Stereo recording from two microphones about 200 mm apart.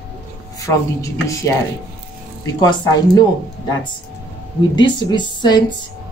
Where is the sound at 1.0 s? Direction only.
15° left (ahead or behind).